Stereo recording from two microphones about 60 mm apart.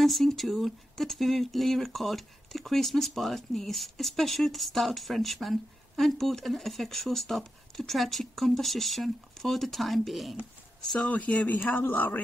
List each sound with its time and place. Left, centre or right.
0.0 s speech: centre
11.1 s a man's voice: left